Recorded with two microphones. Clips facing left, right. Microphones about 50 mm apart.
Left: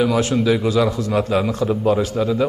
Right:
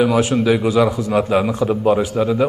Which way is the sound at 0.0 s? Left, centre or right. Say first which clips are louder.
Right 2 dB; centre.